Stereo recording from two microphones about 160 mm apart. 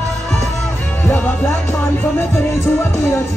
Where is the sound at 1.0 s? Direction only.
10° left (ahead or behind).